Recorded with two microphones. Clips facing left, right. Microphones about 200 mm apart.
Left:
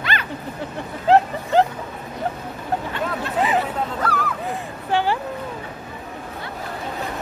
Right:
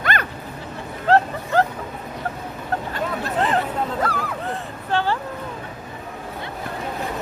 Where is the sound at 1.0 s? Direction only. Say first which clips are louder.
Left 2 dB; 15° left (ahead or behind).